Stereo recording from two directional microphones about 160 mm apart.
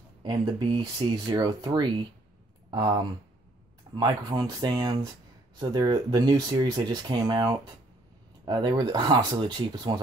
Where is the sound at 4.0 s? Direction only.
25° right (ahead or behind).